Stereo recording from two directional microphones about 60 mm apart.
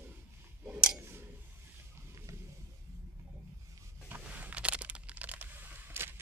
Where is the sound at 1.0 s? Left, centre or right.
Right.